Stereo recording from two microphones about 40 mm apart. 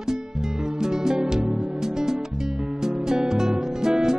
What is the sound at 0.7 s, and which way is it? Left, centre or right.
Music, centre.